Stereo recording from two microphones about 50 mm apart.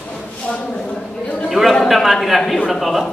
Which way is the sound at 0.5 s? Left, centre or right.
Left.